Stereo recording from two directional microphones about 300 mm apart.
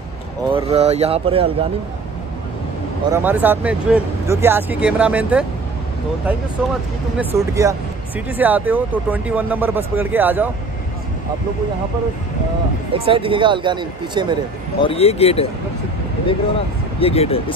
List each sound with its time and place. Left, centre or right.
0.5 s speech: centre
3.1 s speech: centre
6.6 s speech: centre
12.9 s speech: centre
14.8 s speech: centre